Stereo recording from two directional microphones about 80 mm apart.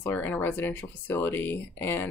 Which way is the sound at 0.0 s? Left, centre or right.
Left.